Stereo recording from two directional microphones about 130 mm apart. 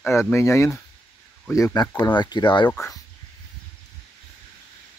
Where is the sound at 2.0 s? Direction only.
35° left (ahead or behind).